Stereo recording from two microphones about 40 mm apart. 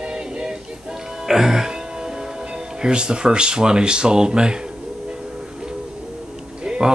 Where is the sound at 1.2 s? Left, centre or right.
Centre.